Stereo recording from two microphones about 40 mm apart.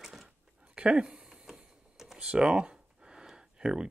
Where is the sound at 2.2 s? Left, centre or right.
Right.